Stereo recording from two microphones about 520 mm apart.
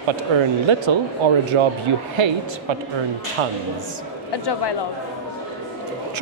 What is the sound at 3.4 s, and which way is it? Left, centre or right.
Speech, right.